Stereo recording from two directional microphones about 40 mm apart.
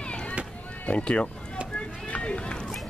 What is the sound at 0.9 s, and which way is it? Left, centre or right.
Speech, left.